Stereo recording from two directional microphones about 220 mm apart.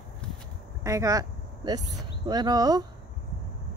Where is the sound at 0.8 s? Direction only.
15° right (ahead or behind).